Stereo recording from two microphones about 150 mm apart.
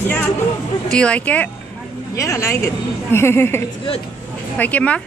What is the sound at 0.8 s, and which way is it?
Speech, 5° left (ahead or behind).